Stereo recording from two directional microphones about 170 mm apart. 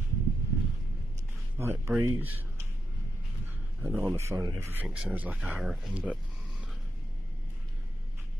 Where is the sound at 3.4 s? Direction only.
15° right (ahead or behind).